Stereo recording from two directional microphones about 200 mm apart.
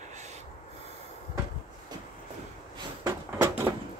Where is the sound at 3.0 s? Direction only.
15° right (ahead or behind).